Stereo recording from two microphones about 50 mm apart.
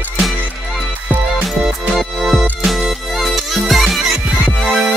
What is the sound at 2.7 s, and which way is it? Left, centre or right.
Music, centre.